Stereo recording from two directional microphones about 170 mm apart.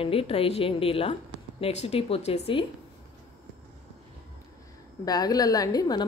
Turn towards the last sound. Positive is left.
turn(degrees=20)  # may be behind; listen again after turning